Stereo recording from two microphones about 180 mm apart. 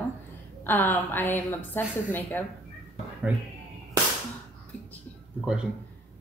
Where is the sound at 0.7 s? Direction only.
10° left (ahead or behind).